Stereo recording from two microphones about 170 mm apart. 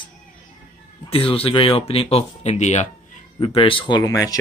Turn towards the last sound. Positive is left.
turn(degrees=20)  # may be behind; listen again after turning